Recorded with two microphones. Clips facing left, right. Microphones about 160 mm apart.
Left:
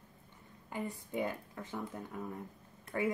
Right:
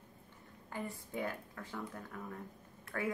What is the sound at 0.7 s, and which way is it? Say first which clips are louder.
A woman's voice: left 3 dB; 15° left (ahead or behind).